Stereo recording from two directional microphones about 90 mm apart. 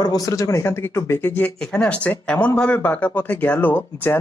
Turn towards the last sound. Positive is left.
turn(degrees=20)  # may be behind; listen again after turning